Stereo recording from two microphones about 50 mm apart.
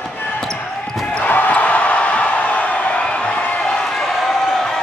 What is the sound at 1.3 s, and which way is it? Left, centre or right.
Basketball bounce, left.